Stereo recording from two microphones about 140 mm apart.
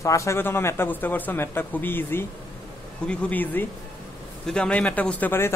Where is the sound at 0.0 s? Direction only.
20° left (ahead or behind).